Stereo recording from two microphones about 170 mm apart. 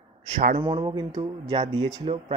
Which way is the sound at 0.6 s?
30° right (ahead or behind).